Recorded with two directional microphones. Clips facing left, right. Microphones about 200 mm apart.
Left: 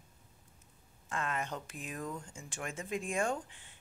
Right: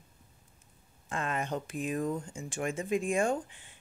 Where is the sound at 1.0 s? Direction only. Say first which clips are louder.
Right 3 dB; 20° right (ahead or behind).